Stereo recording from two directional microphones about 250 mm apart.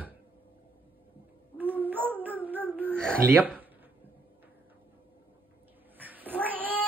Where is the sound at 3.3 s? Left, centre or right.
Centre.